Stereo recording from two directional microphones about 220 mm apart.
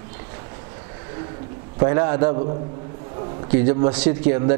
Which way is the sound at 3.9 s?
10° right (ahead or behind).